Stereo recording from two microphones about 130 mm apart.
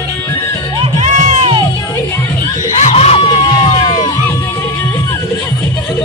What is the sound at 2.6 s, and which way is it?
Crowd, 60° left (ahead or behind).